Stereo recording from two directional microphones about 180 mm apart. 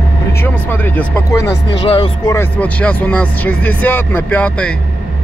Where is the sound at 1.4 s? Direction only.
30° left (ahead or behind).